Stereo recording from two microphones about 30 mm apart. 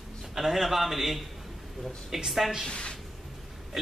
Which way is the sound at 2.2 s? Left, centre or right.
Centre.